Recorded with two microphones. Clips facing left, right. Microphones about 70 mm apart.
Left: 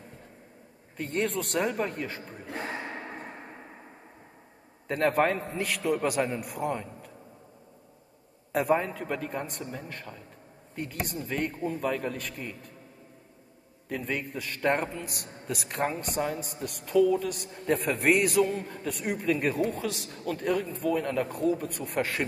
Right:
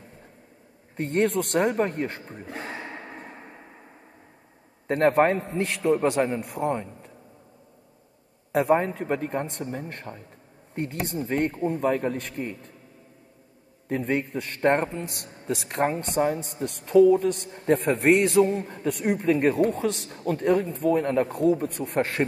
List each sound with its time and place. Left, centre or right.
0.9 s a man's voice: right
2.6 s gasp: left
4.8 s a man's voice: right
8.5 s a man's voice: right
13.8 s a man's voice: right